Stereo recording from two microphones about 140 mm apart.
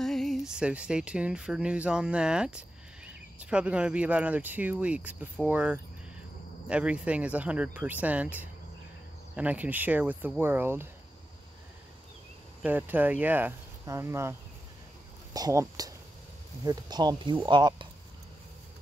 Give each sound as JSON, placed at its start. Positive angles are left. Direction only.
{"t": 0.0, "sound": "speech", "side_deg": 0}
{"t": 12.6, "sound": "speech", "side_deg": -10}
{"t": 15.3, "sound": "speech", "side_deg": -25}